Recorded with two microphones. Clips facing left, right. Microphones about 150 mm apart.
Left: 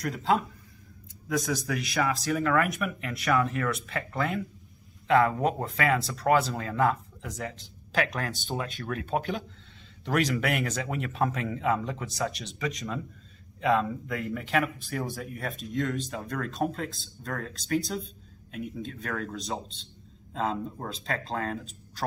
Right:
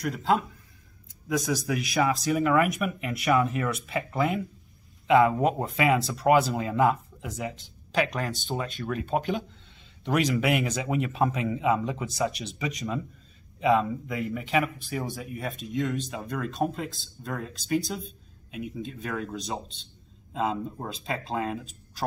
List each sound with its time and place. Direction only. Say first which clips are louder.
0.0 s speech: right 1 dB; centre (ahead or behind)
2.0 s speech: right 3 dB; 20° right (ahead or behind)